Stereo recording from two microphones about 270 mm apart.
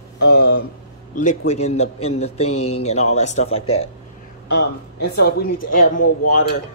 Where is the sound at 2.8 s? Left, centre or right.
Left.